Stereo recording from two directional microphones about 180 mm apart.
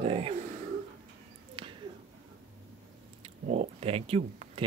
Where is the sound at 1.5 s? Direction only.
30° right (ahead or behind).